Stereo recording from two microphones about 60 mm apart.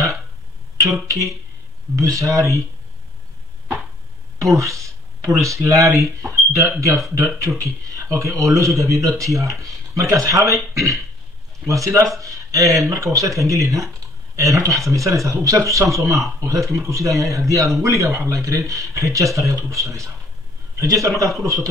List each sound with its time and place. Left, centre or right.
1.0 s speech: right
4.6 s a man's voice: right
16.7 s a man's voice: right